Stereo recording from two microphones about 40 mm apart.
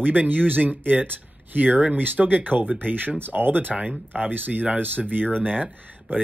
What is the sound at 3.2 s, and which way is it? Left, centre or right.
Speech, right.